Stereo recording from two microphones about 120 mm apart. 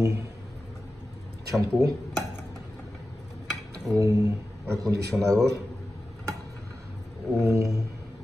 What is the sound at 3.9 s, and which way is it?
A man's voice, 25° right (ahead or behind).